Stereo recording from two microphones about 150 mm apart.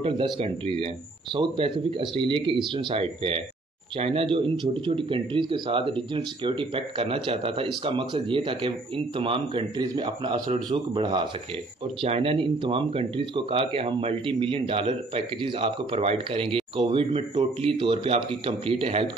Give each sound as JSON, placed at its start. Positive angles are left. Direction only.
{"t": 0.0, "sound": "speech", "side_deg": -35}